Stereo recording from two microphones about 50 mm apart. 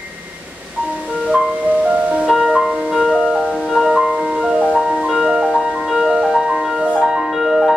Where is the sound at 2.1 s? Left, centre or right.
Centre.